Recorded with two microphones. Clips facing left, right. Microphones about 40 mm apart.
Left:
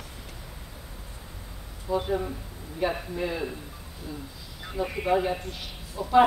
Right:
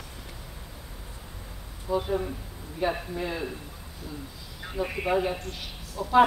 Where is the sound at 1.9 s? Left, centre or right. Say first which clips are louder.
Even; centre.